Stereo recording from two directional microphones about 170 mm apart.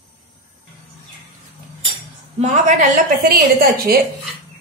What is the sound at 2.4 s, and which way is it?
Speech, 45° right (ahead or behind).